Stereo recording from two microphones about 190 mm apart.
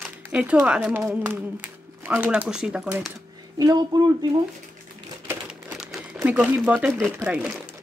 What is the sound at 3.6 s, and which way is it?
Speech, 20° right (ahead or behind).